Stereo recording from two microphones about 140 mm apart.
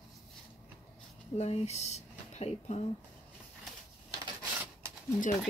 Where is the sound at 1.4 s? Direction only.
50° left (ahead or behind).